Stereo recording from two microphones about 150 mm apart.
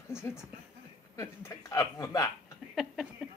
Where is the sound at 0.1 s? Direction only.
15° left (ahead or behind).